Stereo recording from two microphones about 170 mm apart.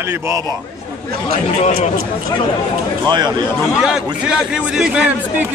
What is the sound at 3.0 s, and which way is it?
Speech, 25° right (ahead or behind).